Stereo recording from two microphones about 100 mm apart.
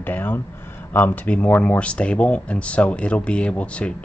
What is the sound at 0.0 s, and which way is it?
Speech, 20° left (ahead or behind).